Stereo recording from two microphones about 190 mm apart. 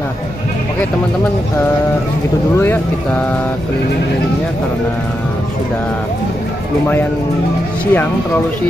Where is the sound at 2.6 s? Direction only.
10° left (ahead or behind).